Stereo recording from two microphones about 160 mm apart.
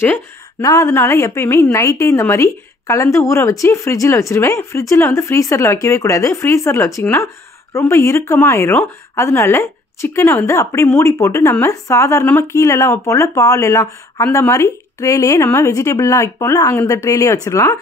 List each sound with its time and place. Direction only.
0.0 s speech: 15° left (ahead or behind)